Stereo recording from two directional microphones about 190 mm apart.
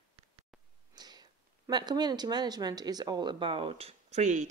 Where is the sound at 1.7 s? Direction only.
20° right (ahead or behind).